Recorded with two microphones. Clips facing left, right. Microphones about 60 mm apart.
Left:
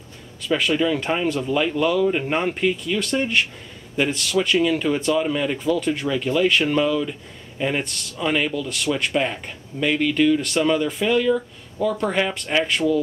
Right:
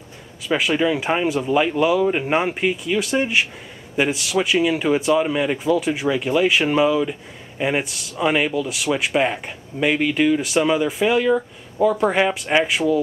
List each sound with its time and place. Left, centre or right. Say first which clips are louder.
0.5 s speech: right 1 dB; centre